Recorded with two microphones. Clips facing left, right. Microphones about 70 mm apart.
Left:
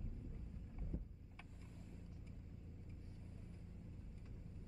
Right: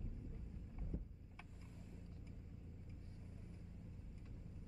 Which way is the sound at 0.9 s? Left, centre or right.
Centre.